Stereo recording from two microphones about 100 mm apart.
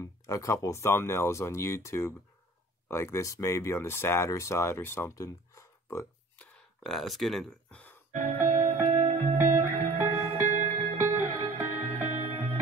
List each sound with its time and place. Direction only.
0.0 s speech: 30° left (ahead or behind)
6.8 s speech: centre (ahead or behind)
8.1 s music: 80° right; by 12.5 s 65° right (ahead or behind)